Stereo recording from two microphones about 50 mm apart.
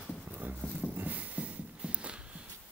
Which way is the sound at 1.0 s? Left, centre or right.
Right.